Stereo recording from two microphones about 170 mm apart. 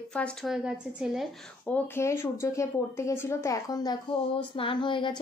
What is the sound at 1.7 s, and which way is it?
A woman's voice, 15° left (ahead or behind).